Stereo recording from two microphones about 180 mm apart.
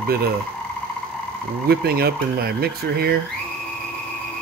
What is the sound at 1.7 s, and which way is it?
Speech, 60° right (ahead or behind).